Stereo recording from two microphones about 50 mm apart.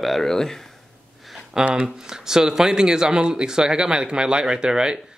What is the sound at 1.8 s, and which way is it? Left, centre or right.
Speech, centre.